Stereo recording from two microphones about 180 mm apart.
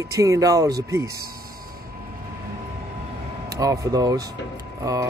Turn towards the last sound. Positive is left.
turn(degrees=-20)  # may be behind; listen again after turning